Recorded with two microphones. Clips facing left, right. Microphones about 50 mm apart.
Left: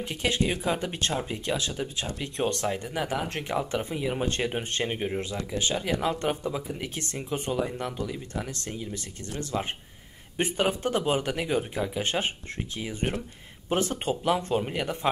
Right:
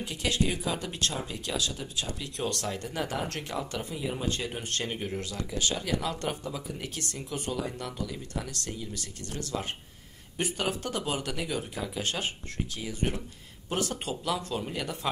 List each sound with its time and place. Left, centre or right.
0.0 s speech: left